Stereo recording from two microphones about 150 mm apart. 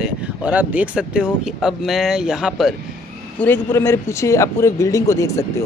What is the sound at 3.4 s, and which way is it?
Speech, 15° left (ahead or behind).